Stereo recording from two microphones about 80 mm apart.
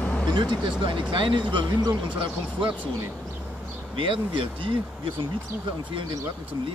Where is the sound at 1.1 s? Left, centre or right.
Right.